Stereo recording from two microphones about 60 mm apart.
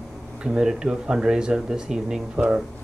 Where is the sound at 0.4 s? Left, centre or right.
Centre.